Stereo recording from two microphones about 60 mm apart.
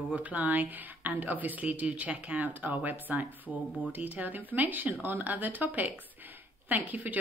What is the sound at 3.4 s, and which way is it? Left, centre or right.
Speech, left.